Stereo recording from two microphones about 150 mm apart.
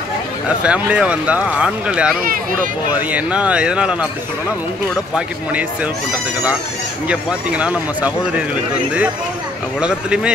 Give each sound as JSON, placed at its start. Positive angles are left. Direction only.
{"t": 0.7, "sound": "speech", "side_deg": -10}
{"t": 2.2, "sound": "speech", "side_deg": -70}
{"t": 2.9, "sound": "speech", "side_deg": -10}
{"t": 5.1, "sound": "speech", "side_deg": -10}
{"t": 7.1, "sound": "speech", "side_deg": -10}
{"t": 9.8, "sound": "speech", "side_deg": -5}